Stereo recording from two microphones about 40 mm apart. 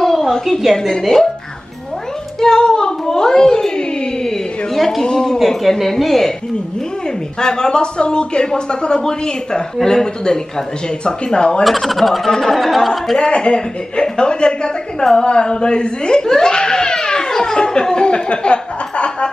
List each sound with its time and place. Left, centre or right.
0.8 s speech: centre
2.4 s a sound: centre
4.7 s speech: centre
5.0 s speech: centre
5.4 s a woman's voice: centre
7.3 s speech: centre
11.6 s a woman's voice: centre
12.3 s speech: centre
12.5 s a woman's voice: centre
13.2 s speech: left